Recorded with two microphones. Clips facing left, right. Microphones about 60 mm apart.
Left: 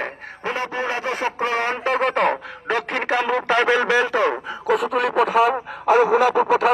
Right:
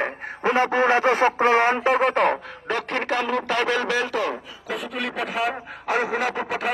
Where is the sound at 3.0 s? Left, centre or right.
Centre.